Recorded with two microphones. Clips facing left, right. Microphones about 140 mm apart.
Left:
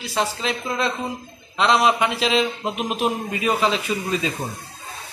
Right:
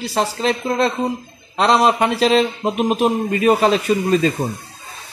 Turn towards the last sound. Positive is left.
turn(degrees=-45)  # may be behind; listen again after turning